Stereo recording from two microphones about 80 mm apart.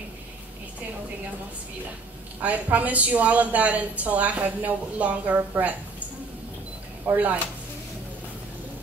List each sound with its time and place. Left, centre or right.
2.4 s a woman's voice: centre
7.1 s a woman's voice: right